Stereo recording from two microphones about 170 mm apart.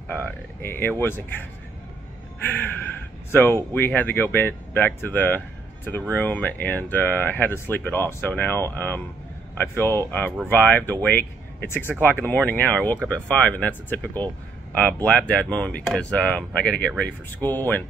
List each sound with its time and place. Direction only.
0.1 s speech: 10° left (ahead or behind)
2.4 s speech: 10° left (ahead or behind)